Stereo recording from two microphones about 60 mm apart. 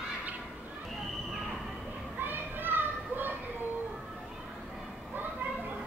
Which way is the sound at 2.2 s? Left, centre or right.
Right.